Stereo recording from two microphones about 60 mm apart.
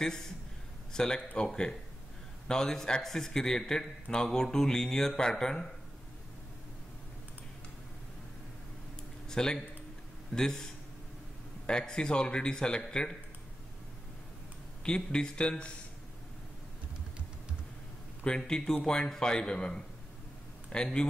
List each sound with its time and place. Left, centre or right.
0.9 s a man's voice: centre
9.3 s a man's voice: centre
14.9 s a man's voice: centre
18.2 s a man's voice: centre